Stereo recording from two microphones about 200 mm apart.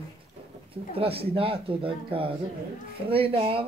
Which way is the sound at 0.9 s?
30° right (ahead or behind).